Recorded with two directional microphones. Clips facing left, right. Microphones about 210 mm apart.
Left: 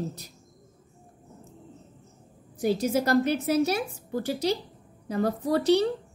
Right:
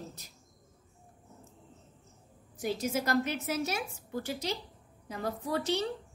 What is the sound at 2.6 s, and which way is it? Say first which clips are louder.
A woman's voice: left 7 dB; 35° left (ahead or behind).